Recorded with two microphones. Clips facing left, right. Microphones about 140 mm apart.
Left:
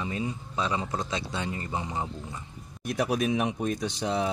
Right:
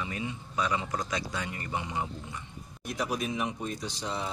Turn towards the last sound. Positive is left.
turn(degrees=60)  # may be behind; listen again after turning